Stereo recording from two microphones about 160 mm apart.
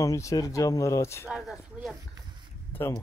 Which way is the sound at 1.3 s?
Centre (ahead or behind).